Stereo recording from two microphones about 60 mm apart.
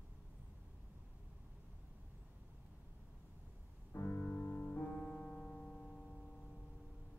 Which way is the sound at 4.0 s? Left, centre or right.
Left.